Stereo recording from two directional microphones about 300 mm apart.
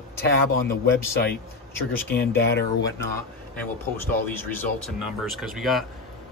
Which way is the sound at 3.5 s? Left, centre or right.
Centre.